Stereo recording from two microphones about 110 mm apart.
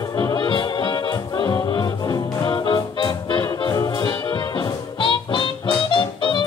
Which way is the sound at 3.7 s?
35° left (ahead or behind).